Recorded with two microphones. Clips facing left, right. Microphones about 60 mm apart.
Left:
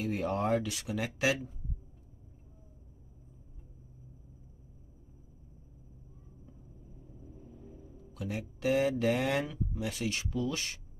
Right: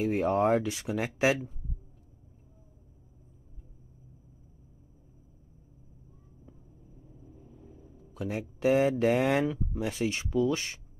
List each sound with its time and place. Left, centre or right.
0.0 s speech: right
7.3 s a sound: centre
8.0 s speech: right